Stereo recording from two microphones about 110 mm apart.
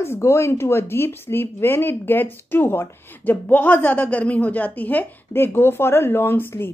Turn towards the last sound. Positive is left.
turn(degrees=20)  # may be behind; listen again after turning